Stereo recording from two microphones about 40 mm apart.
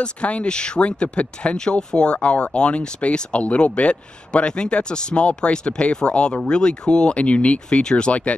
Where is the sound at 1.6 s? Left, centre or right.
Centre.